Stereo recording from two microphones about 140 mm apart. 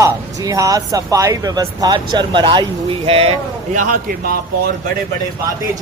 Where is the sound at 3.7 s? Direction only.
80° right.